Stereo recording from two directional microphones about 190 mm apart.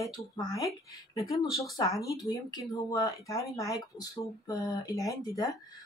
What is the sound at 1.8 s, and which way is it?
Speech, 15° left (ahead or behind).